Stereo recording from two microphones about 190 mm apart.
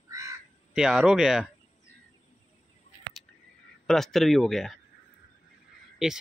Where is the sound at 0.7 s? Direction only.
5° right (ahead or behind).